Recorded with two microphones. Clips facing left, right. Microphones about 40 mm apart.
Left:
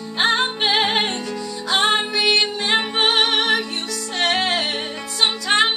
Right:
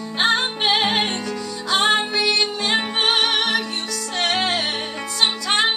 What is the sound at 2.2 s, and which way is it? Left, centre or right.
Music, left.